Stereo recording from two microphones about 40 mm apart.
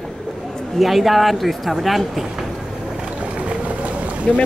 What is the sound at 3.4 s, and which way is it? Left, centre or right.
Boat, right.